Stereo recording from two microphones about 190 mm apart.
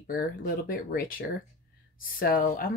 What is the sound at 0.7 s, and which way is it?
Speech, 50° left (ahead or behind).